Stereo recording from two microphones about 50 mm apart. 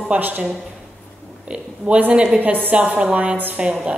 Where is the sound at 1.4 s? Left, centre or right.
Right.